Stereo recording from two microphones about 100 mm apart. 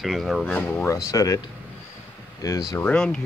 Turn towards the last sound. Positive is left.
turn(degrees=10)  # may be behind; listen again after turning